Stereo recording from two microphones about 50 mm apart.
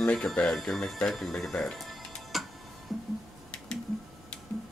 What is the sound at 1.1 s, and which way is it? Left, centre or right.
Music, centre.